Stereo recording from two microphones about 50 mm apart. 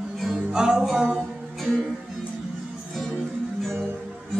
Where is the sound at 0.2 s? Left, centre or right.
Centre.